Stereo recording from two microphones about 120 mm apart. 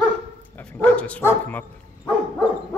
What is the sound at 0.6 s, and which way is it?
Dog, 15° left (ahead or behind).